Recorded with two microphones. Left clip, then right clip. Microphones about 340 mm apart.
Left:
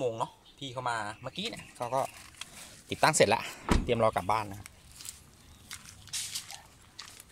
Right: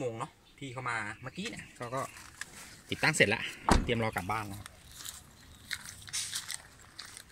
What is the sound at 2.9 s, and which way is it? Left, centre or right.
Speech, left.